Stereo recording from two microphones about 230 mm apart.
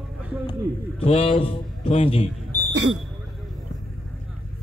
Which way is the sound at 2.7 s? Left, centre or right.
Right.